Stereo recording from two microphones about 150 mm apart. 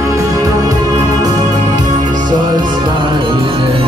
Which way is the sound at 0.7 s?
25° right (ahead or behind).